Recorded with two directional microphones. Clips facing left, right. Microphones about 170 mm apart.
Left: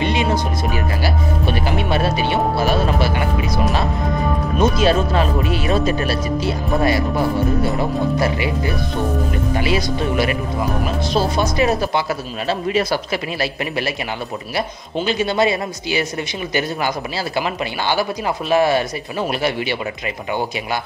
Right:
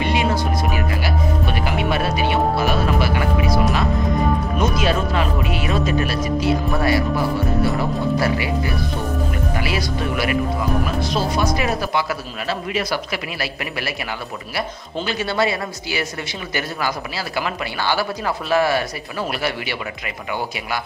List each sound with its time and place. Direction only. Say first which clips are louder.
0.0 s music: left 1 dB; 25° left (ahead or behind)
1.0 s speech: left 1 dB; 30° left (ahead or behind)
4.6 s speech: left 7 dB; 30° left (ahead or behind)
6.7 s speech: left 6 dB; 20° left (ahead or behind)
8.2 s speech: left 1 dB; 25° left (ahead or behind)
11.3 s speech: left 3 dB; 25° left (ahead or behind)
15.0 s speech: left 3 dB; 20° left (ahead or behind)
17.4 s speech: left 1 dB; 20° left (ahead or behind)